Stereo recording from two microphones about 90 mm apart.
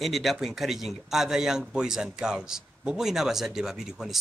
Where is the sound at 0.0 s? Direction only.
Centre (ahead or behind).